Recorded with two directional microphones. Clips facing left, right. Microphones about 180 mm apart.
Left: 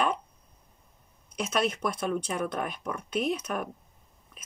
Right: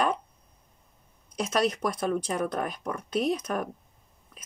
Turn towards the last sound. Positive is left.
turn(degrees=-35)  # may be behind; listen again after turning